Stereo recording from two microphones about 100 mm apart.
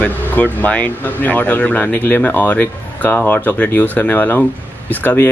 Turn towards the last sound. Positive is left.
turn(degrees=20)  # may be behind; listen again after turning